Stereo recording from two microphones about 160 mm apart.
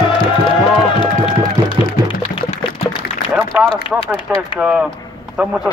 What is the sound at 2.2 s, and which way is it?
Music, 35° left (ahead or behind).